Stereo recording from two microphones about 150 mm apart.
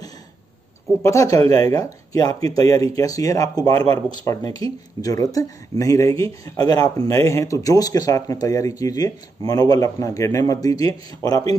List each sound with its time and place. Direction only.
1.0 s speech: 20° left (ahead or behind)